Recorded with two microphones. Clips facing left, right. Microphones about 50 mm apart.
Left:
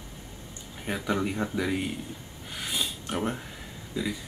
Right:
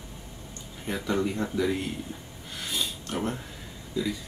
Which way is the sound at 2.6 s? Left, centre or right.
Centre.